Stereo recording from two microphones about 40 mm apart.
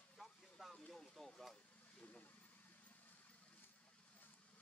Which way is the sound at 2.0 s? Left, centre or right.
Left.